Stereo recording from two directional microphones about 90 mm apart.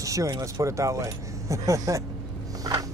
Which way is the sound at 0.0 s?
35° right (ahead or behind).